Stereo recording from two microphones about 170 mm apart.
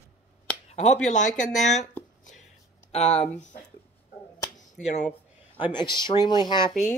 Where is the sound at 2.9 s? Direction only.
40° left (ahead or behind).